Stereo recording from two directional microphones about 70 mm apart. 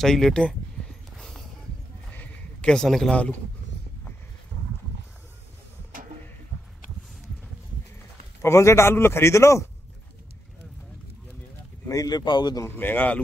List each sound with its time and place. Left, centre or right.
0.0 s speech: centre
1.1 s a sound: centre
2.0 s a sound: left
2.7 s speech: centre
8.4 s a man's voice: left
11.9 s speech: left
12.6 s speech: left